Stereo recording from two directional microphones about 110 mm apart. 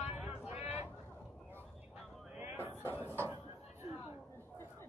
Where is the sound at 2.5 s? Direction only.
20° right (ahead or behind).